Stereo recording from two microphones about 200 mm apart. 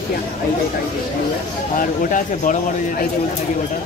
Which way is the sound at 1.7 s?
40° left (ahead or behind).